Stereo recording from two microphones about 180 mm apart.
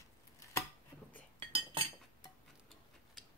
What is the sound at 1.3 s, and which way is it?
Cutlery, 30° right (ahead or behind).